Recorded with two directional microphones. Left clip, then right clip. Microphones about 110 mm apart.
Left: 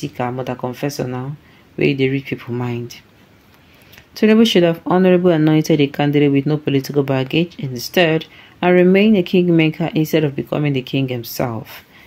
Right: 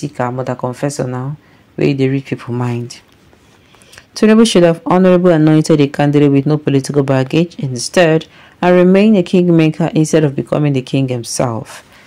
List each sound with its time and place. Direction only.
0.0 s speech: 25° right (ahead or behind)